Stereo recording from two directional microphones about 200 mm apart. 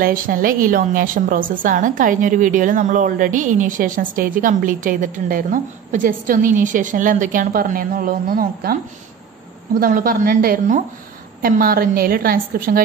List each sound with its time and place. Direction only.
0.0 s a woman's voice: 45° right (ahead or behind)
9.8 s a woman's voice: 45° right (ahead or behind)